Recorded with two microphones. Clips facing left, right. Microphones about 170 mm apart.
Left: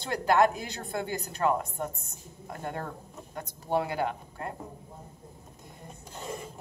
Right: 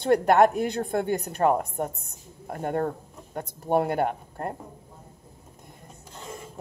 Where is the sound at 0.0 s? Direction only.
60° right (ahead or behind).